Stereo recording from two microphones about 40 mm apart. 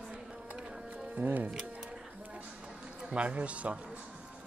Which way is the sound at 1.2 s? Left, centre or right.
Right.